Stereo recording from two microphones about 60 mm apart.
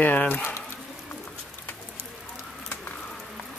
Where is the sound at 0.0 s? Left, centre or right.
Left.